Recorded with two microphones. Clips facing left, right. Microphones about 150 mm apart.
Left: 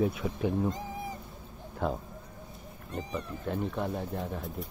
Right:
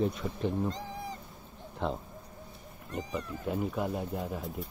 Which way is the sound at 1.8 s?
5° left (ahead or behind).